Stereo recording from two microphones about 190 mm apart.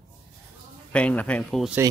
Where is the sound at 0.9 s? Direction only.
5° left (ahead or behind).